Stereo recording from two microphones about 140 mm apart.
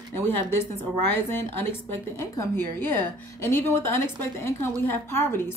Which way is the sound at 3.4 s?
15° left (ahead or behind).